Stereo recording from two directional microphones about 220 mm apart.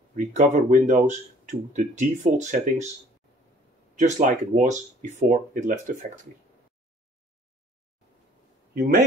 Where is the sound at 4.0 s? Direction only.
35° right (ahead or behind).